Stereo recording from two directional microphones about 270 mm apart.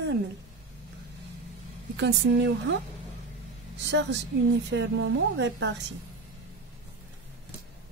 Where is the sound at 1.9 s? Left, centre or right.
Right.